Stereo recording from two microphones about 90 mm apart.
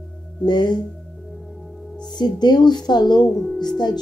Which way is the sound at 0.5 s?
55° left (ahead or behind).